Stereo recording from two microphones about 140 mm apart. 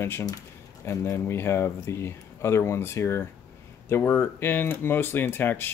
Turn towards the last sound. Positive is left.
turn(degrees=15)  # may be behind; listen again after turning